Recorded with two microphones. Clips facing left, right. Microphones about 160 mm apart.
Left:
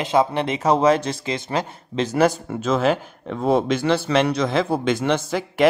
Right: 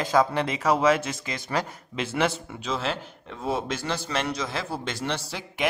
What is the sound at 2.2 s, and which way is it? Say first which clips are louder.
Speech: left 7 dB; 45° left (ahead or behind).